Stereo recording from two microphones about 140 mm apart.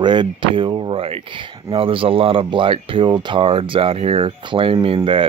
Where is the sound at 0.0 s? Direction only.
35° right (ahead or behind).